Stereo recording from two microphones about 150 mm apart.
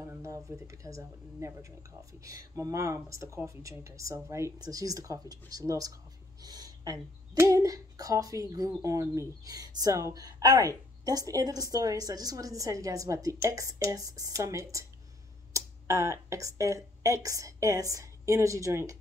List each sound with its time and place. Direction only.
0.0 s speech: 20° right (ahead or behind)